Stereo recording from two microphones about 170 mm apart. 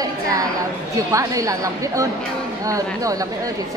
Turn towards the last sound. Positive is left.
turn(degrees=-20)  # may be behind; listen again after turning